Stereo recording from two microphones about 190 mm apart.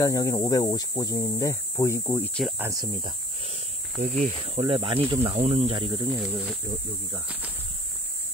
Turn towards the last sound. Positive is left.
turn(degrees=-10)  # may be behind; listen again after turning